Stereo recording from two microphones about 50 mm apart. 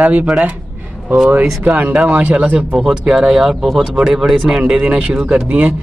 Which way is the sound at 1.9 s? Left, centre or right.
Right.